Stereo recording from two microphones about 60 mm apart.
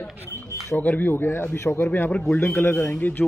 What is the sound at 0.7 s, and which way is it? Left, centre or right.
Speech, left.